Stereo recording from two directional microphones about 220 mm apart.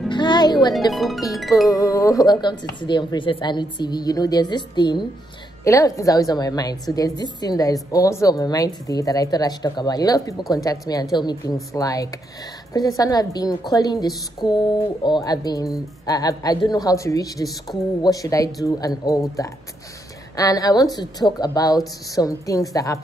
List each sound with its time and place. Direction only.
0.1 s music: 20° left (ahead or behind)
0.9 s music: centre (ahead or behind)
1.7 s a woman's voice: 15° left (ahead or behind)